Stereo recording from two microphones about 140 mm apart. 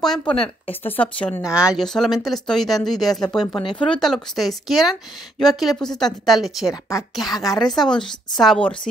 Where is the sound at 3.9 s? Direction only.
Centre (ahead or behind).